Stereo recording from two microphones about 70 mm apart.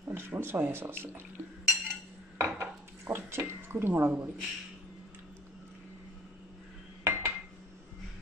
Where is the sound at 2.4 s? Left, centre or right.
Right.